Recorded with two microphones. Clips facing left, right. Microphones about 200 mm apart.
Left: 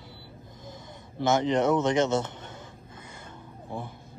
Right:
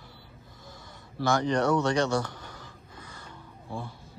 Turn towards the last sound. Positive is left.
turn(degrees=20)  # may be behind; listen again after turning